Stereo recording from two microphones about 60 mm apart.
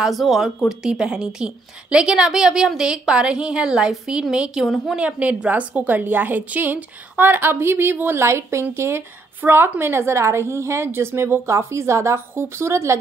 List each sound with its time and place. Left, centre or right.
0.0 s a woman's voice: centre; by 12.9 s right